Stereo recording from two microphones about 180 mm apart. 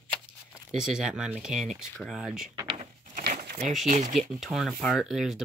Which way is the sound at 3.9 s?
45° right (ahead or behind).